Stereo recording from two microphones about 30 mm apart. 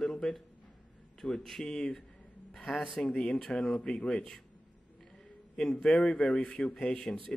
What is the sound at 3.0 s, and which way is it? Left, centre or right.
Speech, left.